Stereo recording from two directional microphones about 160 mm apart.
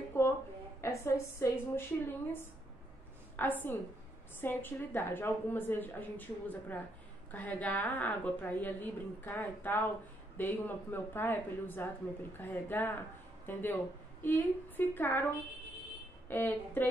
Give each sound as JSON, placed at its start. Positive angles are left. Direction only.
{"t": 0.2, "sound": "a sound", "side_deg": 15}
{"t": 0.7, "sound": "a woman's voice", "side_deg": 15}
{"t": 16.3, "sound": "a woman's voice", "side_deg": 10}